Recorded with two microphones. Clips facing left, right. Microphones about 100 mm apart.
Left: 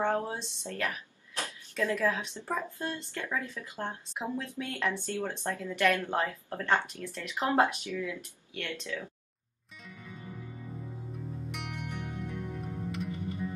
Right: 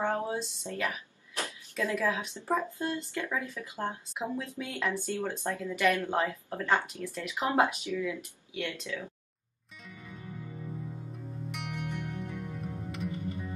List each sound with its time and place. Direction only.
0.0 s speech: 5° right (ahead or behind)
5.0 s speech: 15° right (ahead or behind)
9.8 s music: centre (ahead or behind)
11.5 s music: centre (ahead or behind)